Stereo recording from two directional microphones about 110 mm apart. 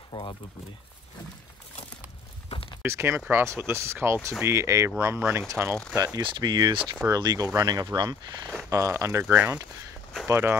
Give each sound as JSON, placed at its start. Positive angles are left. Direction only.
{"t": 0.1, "sound": "speech", "side_deg": 50}
{"t": 2.5, "sound": "a sound", "side_deg": 55}
{"t": 2.8, "sound": "speech", "side_deg": -20}
{"t": 6.2, "sound": "speech", "side_deg": -45}